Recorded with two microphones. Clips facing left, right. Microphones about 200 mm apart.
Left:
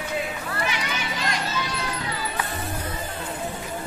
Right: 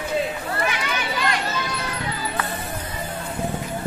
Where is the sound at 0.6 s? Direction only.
55° right (ahead or behind).